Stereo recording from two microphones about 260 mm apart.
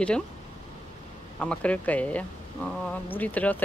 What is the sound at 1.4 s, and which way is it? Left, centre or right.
Speech, centre.